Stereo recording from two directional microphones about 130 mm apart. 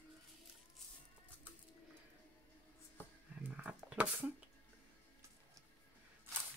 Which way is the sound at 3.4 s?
10° right (ahead or behind).